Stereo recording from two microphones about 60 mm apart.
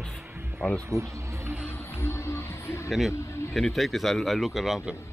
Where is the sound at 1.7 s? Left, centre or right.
Left.